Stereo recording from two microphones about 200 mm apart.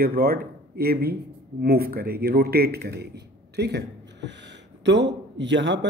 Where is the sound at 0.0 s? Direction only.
50° right (ahead or behind).